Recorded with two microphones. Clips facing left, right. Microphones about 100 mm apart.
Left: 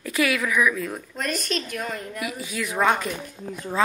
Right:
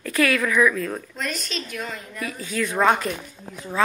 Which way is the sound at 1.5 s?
50° left (ahead or behind).